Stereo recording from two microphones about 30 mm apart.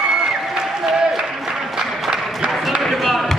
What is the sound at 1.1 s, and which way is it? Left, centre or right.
Applause, centre.